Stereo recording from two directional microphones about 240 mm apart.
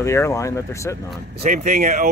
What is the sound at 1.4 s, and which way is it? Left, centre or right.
Speech, right.